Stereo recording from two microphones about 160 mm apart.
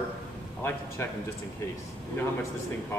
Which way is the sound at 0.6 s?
15° left (ahead or behind).